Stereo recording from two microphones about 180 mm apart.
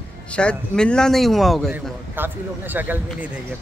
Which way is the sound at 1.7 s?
10° right (ahead or behind).